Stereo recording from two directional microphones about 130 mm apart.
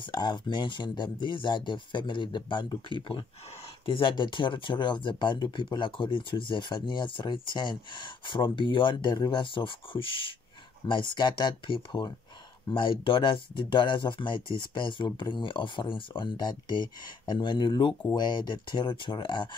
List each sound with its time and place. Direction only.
0.0 s speech: 35° left (ahead or behind)